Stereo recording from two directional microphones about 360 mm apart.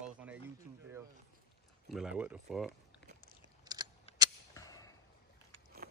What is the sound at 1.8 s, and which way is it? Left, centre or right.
Speech, centre.